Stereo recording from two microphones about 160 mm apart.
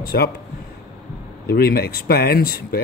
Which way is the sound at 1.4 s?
75° left (ahead or behind).